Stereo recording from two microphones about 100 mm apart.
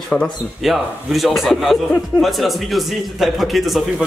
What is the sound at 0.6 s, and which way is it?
A man's voice, centre (ahead or behind).